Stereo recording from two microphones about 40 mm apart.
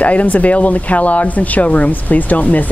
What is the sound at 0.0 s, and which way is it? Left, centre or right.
Speech, left.